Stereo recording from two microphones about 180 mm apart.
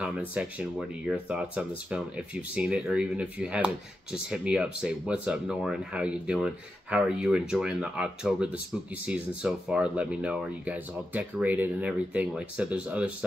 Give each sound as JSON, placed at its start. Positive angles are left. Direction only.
{"t": 0.0, "sound": "speech", "side_deg": -5}